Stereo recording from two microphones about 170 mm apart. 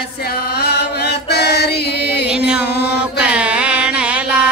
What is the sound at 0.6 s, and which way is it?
Chant, 70° left (ahead or behind).